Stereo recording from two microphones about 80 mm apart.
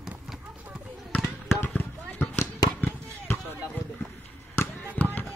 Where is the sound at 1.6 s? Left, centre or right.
Left.